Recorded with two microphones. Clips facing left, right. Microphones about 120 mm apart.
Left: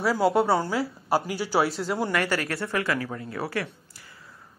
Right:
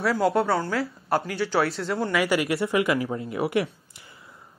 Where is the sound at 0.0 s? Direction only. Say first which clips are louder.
Even; centre (ahead or behind).